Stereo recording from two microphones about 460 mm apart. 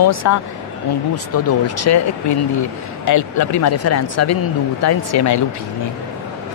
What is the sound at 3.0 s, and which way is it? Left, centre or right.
Speech, left.